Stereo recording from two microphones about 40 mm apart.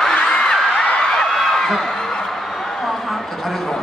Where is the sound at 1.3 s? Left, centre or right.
Centre.